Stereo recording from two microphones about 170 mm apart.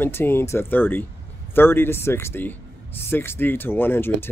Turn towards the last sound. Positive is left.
turn(degrees=10)  # may be behind; listen again after turning